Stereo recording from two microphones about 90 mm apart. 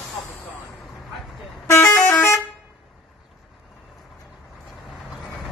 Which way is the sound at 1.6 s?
30° left (ahead or behind).